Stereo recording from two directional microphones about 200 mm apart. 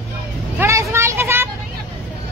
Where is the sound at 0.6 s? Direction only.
15° right (ahead or behind).